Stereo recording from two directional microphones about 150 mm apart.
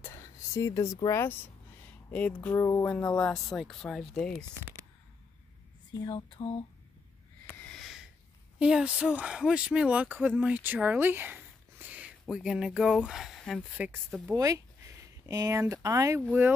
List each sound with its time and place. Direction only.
0.0 s whispering: 20° left (ahead or behind)
0.9 s speech: 20° left (ahead or behind)
2.0 s speech: 10° left (ahead or behind)
6.0 s a sound: 35° left (ahead or behind)
7.4 s a sound: 5° left (ahead or behind)
8.5 s speech: 5° right (ahead or behind)
13.7 s speech: 10° right (ahead or behind)
14.3 s speech: 25° right (ahead or behind)